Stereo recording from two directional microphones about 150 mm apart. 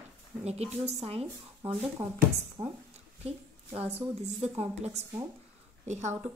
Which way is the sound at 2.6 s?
15° right (ahead or behind).